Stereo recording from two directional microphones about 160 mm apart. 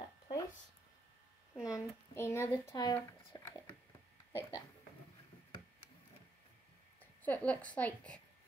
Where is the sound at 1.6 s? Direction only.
20° left (ahead or behind).